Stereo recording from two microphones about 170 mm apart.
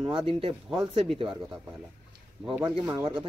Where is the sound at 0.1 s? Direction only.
30° right (ahead or behind).